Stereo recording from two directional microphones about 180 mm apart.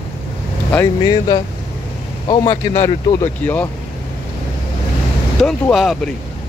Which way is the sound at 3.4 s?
10° left (ahead or behind).